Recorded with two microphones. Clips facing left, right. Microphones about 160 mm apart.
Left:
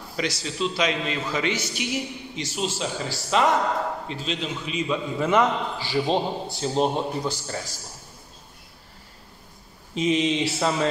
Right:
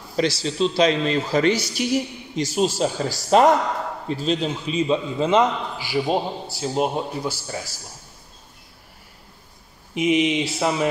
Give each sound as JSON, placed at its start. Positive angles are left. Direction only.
{"t": 0.1, "sound": "a man's voice", "side_deg": -30}
{"t": 9.9, "sound": "a man's voice", "side_deg": -15}